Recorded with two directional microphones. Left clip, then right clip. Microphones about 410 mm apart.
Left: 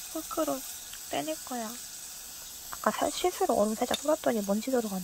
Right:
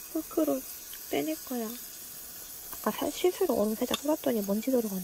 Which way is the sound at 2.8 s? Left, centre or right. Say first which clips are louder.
Left 1 dB; centre.